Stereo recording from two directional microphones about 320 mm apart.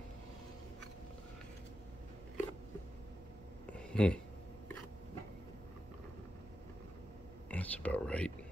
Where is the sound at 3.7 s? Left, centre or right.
Centre.